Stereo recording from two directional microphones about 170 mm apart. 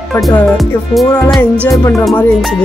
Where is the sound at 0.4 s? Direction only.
5° left (ahead or behind).